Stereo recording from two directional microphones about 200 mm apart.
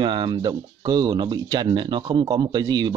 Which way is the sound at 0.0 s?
20° right (ahead or behind).